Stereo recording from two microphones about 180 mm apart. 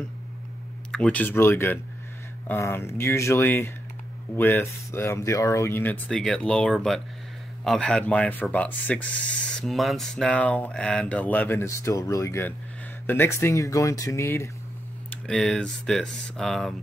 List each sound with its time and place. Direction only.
0.9 s speech: 10° left (ahead or behind)
15.0 s speech: 5° left (ahead or behind)